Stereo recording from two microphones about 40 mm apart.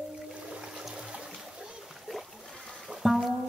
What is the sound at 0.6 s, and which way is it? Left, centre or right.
Water, centre.